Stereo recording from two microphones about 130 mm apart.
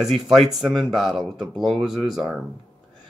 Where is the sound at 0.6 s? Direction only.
Centre (ahead or behind).